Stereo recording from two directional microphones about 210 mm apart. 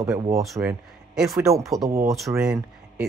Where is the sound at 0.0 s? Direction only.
15° right (ahead or behind).